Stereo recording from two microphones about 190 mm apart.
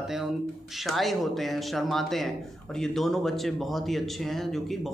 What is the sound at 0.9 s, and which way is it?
Speech, centre (ahead or behind).